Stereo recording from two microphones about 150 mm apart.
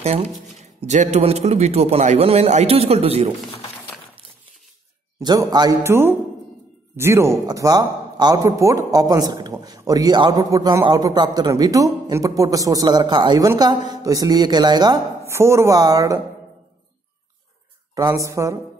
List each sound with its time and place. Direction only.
0.0 s speech: 45° right (ahead or behind)
5.2 s speech: 25° right (ahead or behind)
15.2 s speech: 20° right (ahead or behind)
17.9 s speech: 20° right (ahead or behind)